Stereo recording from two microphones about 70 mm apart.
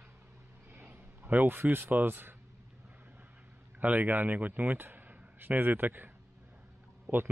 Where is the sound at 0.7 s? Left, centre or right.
Right.